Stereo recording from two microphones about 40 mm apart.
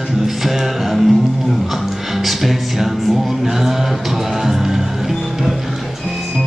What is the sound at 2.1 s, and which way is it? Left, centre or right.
Music, centre.